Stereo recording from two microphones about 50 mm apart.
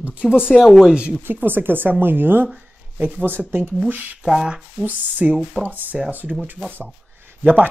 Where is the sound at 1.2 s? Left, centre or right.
Right.